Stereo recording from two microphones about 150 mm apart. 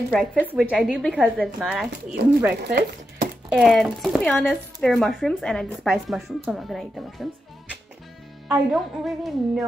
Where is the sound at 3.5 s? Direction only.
Centre (ahead or behind).